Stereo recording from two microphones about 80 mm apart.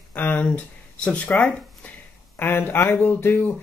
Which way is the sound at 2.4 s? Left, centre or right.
Left.